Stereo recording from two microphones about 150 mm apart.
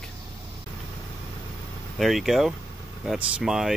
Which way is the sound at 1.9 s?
Centre (ahead or behind).